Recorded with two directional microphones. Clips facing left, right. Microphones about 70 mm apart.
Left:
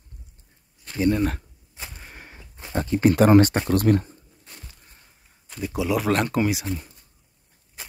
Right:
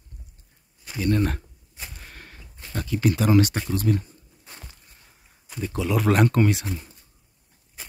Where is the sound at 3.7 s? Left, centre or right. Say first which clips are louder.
Left 5 dB; left.